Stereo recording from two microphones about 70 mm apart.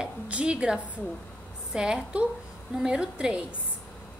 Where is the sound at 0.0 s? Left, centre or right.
Centre.